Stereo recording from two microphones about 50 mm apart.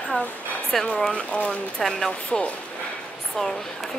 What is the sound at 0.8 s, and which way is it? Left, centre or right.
Speech, left.